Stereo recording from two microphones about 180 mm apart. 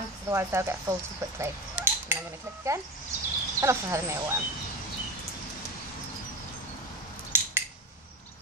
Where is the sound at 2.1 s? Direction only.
15° right (ahead or behind).